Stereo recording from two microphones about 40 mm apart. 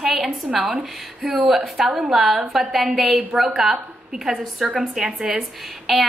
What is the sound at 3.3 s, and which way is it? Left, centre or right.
Speech, right.